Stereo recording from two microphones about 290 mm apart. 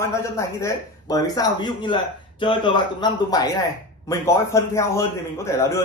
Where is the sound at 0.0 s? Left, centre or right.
Centre.